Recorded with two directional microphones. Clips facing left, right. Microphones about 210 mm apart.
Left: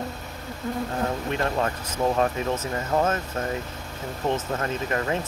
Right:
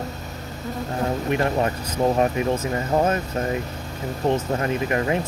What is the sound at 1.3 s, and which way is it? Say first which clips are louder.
Speech: right 4 dB; 15° right (ahead or behind).